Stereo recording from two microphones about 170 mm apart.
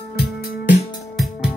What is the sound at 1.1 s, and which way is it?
Music, centre (ahead or behind).